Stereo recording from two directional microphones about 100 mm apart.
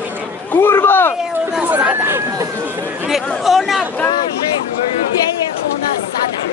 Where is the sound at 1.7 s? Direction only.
15° right (ahead or behind).